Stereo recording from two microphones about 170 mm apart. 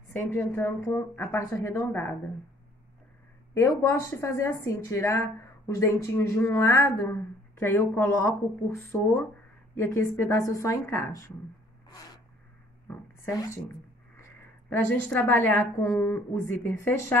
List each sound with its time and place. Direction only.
0.2 s speech: 15° left (ahead or behind)
3.5 s speech: 15° left (ahead or behind)
12.8 s a sound: 15° left (ahead or behind)
14.7 s speech: 10° left (ahead or behind)